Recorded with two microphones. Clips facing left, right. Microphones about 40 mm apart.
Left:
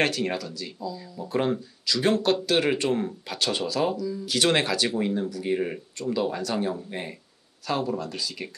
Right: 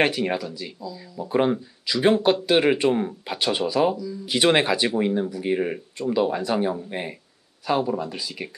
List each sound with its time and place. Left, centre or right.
0.0 s speech: centre